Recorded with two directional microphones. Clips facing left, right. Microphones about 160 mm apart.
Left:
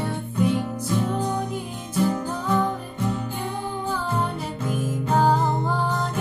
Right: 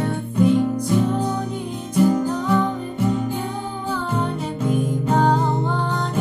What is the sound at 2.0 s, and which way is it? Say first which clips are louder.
Music: right 6 dB; 10° right (ahead or behind).